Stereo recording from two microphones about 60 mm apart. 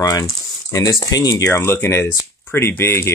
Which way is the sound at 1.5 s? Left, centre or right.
Left.